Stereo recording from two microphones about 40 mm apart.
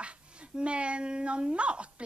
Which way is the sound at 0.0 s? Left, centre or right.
Right.